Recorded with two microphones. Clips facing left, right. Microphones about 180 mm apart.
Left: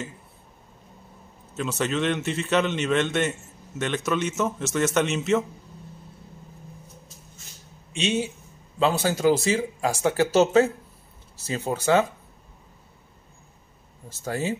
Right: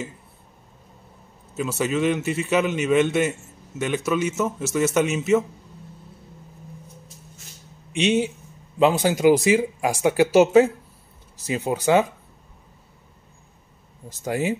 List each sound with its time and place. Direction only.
1.6 s a man's voice: 5° right (ahead or behind)
7.9 s a man's voice: 15° right (ahead or behind)
14.0 s a man's voice: 15° right (ahead or behind)